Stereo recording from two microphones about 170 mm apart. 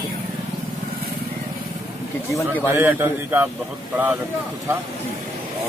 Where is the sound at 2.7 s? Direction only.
10° right (ahead or behind).